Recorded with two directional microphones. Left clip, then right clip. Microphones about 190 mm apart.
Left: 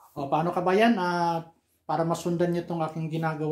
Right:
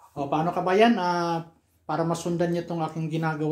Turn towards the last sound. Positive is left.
turn(degrees=5)  # may be behind; listen again after turning